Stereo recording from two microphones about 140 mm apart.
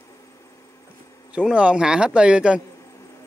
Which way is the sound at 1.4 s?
10° right (ahead or behind).